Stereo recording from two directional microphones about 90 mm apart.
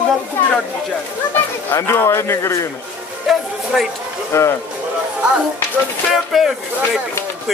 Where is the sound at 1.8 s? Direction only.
30° left (ahead or behind).